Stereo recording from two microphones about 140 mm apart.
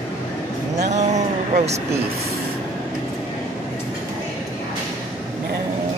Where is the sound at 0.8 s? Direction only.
55° right (ahead or behind).